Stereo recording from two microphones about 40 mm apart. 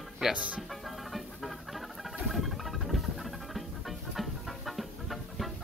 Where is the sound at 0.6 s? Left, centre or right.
Centre.